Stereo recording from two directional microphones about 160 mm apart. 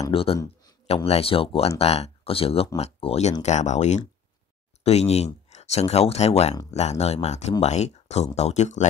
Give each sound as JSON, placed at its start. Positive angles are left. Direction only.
{"t": 0.1, "sound": "speech", "side_deg": 35}